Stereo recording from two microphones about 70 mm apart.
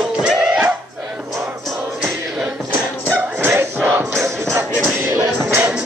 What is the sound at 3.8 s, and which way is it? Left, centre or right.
Music, right.